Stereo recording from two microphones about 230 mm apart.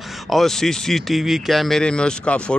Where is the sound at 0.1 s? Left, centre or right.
Centre.